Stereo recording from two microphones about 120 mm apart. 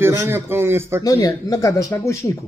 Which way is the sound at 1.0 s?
30° left (ahead or behind).